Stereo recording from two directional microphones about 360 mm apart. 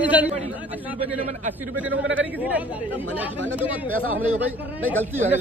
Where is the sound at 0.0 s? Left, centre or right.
Centre.